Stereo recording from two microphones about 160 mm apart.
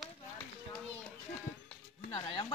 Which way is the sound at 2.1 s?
30° left (ahead or behind).